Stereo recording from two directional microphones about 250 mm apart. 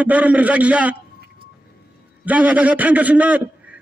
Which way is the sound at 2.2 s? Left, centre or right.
Centre.